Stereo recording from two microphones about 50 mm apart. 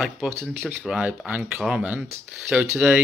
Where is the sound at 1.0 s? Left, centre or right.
Right.